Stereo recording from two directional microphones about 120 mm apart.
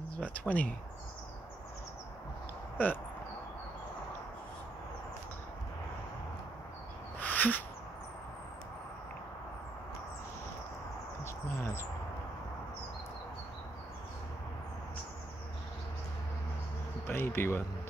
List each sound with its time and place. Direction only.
0.1 s speech: 10° left (ahead or behind)
2.8 s speech: 15° left (ahead or behind)
7.2 s a sound: 15° left (ahead or behind)
11.2 s speech: 20° left (ahead or behind)
17.1 s speech: 20° left (ahead or behind)